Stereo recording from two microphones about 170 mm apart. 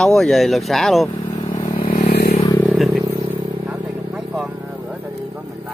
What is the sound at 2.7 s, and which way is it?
Vehicle, 10° right (ahead or behind).